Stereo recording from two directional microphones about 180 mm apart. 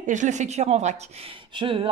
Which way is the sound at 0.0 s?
45° right (ahead or behind).